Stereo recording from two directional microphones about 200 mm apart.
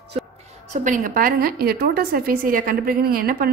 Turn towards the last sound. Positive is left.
turn(degrees=-50)  # may be behind; listen again after turning